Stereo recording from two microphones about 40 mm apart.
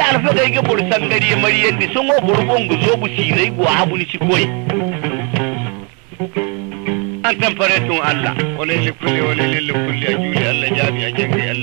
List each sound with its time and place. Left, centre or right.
0.0 s music: centre
6.9 s music: centre